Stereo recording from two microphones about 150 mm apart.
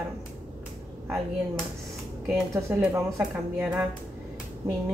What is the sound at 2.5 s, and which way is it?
A woman's voice, 15° right (ahead or behind).